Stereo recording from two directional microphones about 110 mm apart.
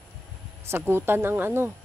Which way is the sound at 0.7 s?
20° right (ahead or behind).